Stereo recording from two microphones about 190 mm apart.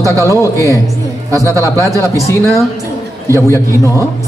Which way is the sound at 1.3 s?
15° right (ahead or behind).